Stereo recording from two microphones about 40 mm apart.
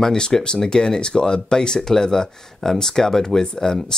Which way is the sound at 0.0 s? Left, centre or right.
Centre.